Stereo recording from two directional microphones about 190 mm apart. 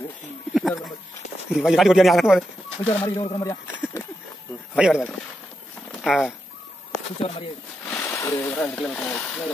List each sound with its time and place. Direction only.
0.6 s speech: centre (ahead or behind)
2.9 s speech: 15° left (ahead or behind)
4.7 s speech: 5° right (ahead or behind)
6.0 s speech: centre (ahead or behind)
7.2 s speech: 30° left (ahead or behind)
7.9 s speech: 10° left (ahead or behind)